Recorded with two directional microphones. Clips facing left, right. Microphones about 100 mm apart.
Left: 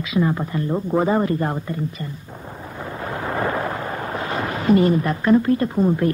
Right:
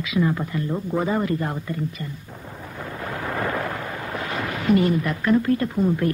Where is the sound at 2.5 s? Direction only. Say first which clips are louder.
Left 2 dB; 25° left (ahead or behind).